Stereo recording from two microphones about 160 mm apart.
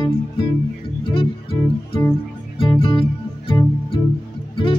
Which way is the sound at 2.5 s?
35° left (ahead or behind).